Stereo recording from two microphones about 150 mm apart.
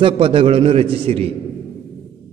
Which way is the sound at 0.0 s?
35° right (ahead or behind).